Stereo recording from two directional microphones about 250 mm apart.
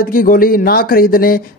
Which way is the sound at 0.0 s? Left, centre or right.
Left.